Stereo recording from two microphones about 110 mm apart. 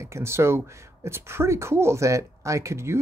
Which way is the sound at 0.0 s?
25° right (ahead or behind).